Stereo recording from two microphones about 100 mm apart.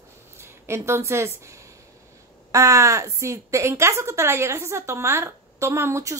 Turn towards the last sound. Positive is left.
turn(degrees=-30)  # may be behind; listen again after turning